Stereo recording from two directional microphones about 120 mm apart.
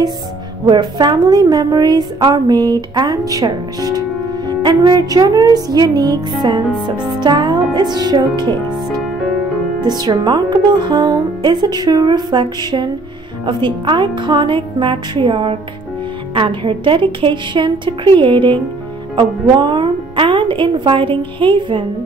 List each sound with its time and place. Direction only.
0.7 s a woman's voice: 40° right (ahead or behind)
9.8 s a woman's voice: 35° right (ahead or behind)